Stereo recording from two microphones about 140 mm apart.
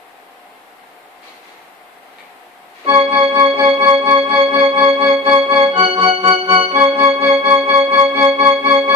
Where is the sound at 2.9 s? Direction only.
35° right (ahead or behind).